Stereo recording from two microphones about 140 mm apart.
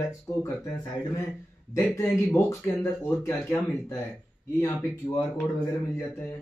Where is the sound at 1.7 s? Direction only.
20° left (ahead or behind).